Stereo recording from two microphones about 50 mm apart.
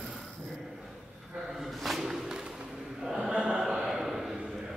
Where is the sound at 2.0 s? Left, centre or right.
Centre.